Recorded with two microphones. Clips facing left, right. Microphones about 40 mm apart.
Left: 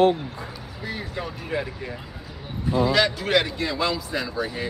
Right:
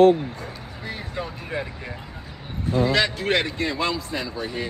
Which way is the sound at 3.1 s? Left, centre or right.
Right.